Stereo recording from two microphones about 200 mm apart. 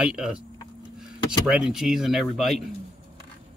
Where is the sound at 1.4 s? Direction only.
5° right (ahead or behind).